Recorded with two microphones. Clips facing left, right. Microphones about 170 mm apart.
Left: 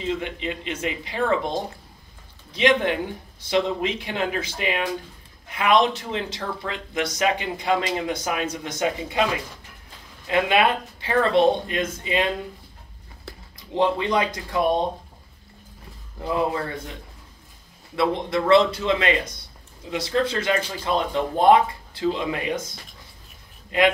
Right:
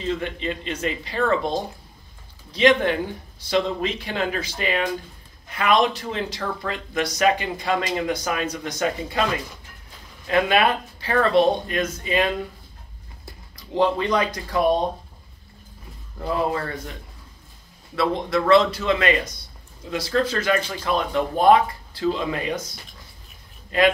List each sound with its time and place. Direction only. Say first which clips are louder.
0.0 s speech: right 1 dB; 15° left (ahead or behind)
2.5 s speech: right 2 dB; 20° left (ahead or behind)
10.2 s speech: right 1 dB; 20° left (ahead or behind)
13.6 s speech: right 1 dB; 20° left (ahead or behind)
16.3 s speech: even; 20° left (ahead or behind)
17.9 s speech: even; 20° left (ahead or behind)